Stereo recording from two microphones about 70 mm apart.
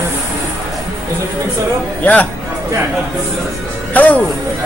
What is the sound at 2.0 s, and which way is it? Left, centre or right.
Speech, left.